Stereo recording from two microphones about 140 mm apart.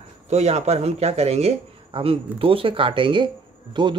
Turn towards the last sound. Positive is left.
turn(degrees=-35)  # may be behind; listen again after turning